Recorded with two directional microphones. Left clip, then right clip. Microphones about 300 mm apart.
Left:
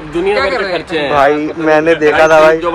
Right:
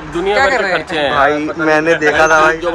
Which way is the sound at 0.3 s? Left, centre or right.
Right.